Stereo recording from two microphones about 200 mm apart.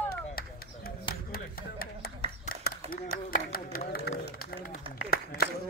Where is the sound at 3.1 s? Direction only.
45° left (ahead or behind).